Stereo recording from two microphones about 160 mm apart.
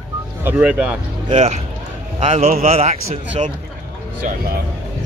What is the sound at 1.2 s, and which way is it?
A man's voice, 40° right (ahead or behind).